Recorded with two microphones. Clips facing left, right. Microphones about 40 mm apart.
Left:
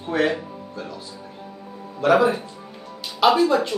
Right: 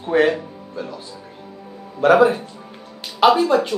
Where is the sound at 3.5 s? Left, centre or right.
Right.